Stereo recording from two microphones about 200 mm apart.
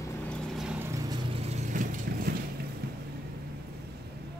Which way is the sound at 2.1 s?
50° right (ahead or behind).